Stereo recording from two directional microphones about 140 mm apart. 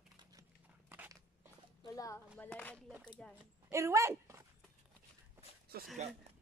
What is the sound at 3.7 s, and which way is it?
Speech, 20° right (ahead or behind).